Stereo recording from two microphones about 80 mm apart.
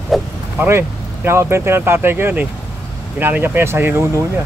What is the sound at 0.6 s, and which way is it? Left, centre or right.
Speech, right.